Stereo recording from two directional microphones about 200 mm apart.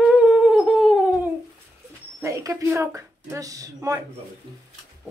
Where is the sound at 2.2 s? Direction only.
15° right (ahead or behind).